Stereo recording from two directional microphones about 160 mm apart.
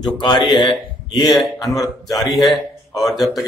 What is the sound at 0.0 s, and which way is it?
Speech, 30° left (ahead or behind).